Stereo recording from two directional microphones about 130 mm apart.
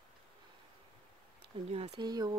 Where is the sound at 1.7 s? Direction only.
55° right (ahead or behind).